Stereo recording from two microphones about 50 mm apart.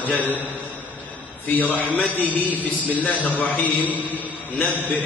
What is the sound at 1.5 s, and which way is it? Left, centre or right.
A man's voice, left.